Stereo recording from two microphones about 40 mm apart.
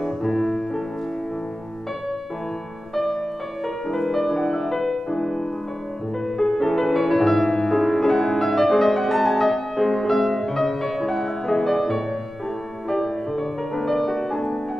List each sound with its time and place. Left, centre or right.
0.0 s music: centre
3.6 s music: centre